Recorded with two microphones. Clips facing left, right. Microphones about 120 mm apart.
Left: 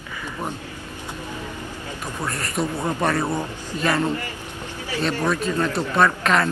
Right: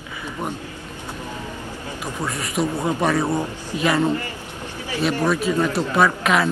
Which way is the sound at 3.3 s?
15° right (ahead or behind).